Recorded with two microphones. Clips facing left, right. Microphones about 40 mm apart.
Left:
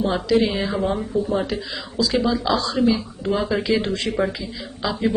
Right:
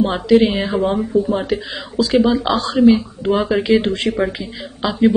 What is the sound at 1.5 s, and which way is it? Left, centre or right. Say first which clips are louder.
Speech: right 6 dB; right.